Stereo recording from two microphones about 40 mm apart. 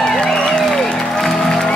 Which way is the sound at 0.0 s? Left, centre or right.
Centre.